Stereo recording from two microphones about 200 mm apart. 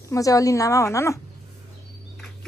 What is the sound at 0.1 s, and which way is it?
A woman's voice, 15° left (ahead or behind).